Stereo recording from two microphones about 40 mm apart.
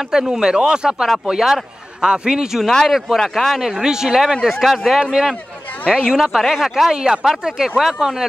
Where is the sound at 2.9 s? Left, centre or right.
Centre.